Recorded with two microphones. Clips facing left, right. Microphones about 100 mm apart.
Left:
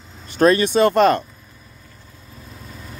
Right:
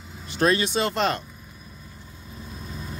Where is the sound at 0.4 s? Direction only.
50° left (ahead or behind).